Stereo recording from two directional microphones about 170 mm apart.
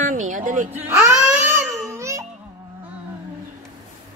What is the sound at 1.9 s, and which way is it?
Music, 15° right (ahead or behind).